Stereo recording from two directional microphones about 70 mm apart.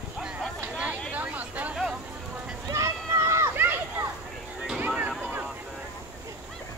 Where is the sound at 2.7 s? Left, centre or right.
Right.